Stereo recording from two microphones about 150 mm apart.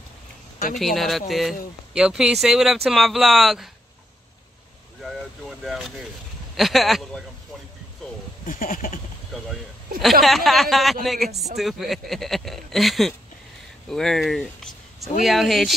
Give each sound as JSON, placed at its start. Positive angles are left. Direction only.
{"t": 0.7, "sound": "speech", "side_deg": 0}
{"t": 5.0, "sound": "speech", "side_deg": 0}
{"t": 8.5, "sound": "a sound", "side_deg": 65}
{"t": 9.3, "sound": "speech", "side_deg": 0}